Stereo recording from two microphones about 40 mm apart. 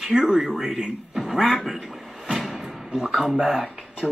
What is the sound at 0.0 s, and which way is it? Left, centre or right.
A man's voice, centre.